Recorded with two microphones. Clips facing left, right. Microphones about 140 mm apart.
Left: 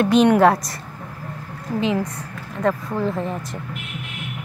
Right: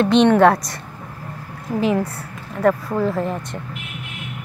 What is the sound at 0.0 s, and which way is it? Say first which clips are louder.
Speech: right 1 dB; 10° left (ahead or behind).